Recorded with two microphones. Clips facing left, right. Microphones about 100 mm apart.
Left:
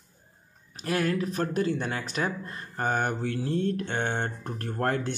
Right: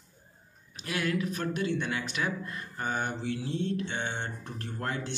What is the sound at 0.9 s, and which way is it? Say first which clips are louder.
Speech: left 4 dB; 40° left (ahead or behind).